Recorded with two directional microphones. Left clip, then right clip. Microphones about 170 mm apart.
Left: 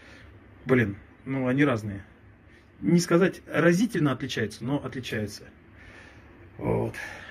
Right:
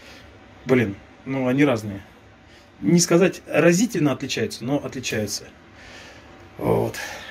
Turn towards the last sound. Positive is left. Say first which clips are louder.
# right 6 dB
turn(degrees=-20)  # may be behind; listen again after turning